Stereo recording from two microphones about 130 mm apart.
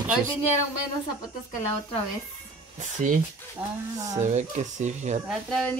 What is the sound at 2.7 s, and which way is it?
Speech, 75° right (ahead or behind).